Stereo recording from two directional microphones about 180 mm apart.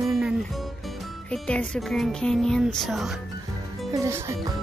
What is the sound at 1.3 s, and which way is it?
Speech, 5° left (ahead or behind).